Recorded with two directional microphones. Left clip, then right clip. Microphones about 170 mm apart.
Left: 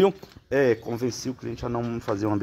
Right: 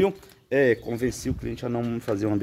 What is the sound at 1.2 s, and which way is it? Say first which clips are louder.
Speech: right 1 dB; 15° right (ahead or behind).